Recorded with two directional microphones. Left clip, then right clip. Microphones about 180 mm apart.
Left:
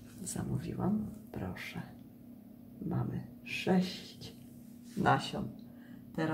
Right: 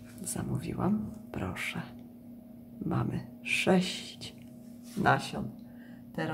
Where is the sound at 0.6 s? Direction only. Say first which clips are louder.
Right 4 dB; 15° right (ahead or behind).